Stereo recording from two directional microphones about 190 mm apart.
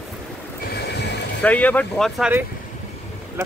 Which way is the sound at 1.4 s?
10° left (ahead or behind).